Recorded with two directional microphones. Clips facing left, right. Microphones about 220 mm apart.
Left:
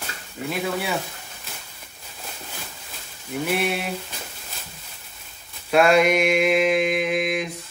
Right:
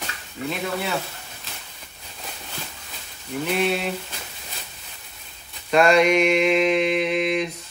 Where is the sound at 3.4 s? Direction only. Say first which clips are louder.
Right 2 dB; 10° left (ahead or behind).